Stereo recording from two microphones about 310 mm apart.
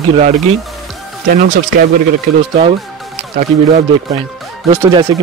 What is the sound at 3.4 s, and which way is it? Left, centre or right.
Speech, right.